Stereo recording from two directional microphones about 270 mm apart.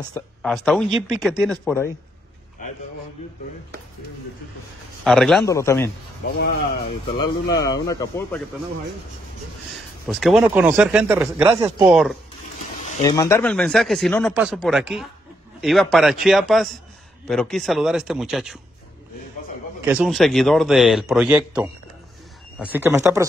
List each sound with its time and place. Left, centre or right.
0.4 s speech: centre
2.6 s a sound: left
5.0 s speech: centre
5.4 s a man's voice: centre
6.2 s speech: left
7.2 s a man's voice: centre
9.7 s speech: centre
12.5 s a sound: left
13.0 s speech: centre
19.8 s speech: centre